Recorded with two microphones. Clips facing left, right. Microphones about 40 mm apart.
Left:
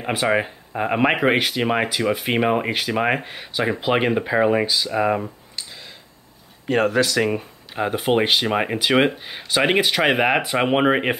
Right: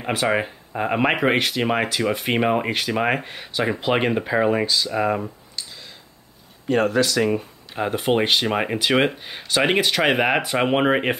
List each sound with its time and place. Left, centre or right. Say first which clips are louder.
0.0 s speech: left 1 dB; centre
6.7 s speech: left 1 dB; left
7.2 s speech: right 1 dB; centre